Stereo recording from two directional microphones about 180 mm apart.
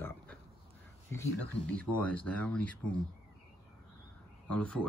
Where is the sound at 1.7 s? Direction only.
10° left (ahead or behind).